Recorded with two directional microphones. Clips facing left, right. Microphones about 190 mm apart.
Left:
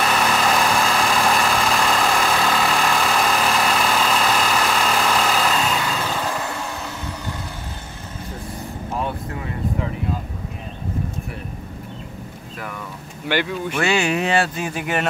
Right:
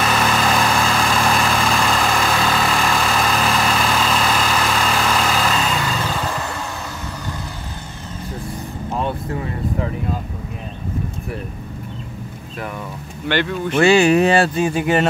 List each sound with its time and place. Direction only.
0.0 s vehicle: centre (ahead or behind)
8.9 s vehicle: 30° right (ahead or behind)
13.3 s speech: 10° left (ahead or behind)
13.7 s speech: 35° right (ahead or behind)